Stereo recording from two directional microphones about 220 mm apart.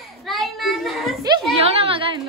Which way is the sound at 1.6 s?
25° right (ahead or behind).